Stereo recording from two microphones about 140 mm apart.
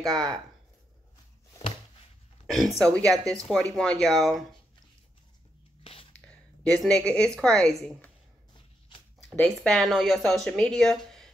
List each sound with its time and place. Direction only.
0.0 s speech: 5° left (ahead or behind)
2.4 s speech: centre (ahead or behind)
6.6 s a woman's voice: 5° left (ahead or behind)
8.5 s a sound: 35° left (ahead or behind)
9.6 s speech: centre (ahead or behind)